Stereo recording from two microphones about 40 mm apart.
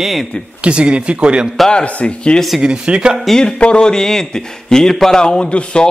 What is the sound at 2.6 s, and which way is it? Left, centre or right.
Speech, right.